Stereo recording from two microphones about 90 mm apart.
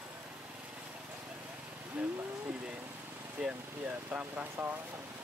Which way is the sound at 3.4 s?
15° right (ahead or behind).